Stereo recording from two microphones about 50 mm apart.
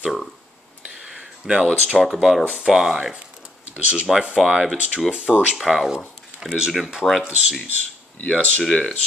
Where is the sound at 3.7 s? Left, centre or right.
Right.